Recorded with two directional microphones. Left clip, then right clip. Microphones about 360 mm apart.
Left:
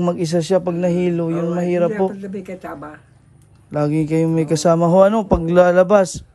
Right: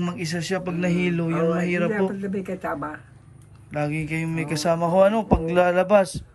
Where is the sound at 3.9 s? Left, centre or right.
Centre.